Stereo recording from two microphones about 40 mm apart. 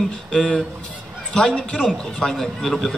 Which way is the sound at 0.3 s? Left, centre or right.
Left.